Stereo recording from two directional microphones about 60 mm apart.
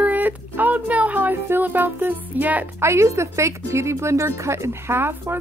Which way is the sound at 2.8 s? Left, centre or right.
Right.